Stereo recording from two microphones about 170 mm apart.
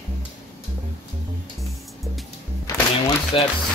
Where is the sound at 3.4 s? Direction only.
35° left (ahead or behind).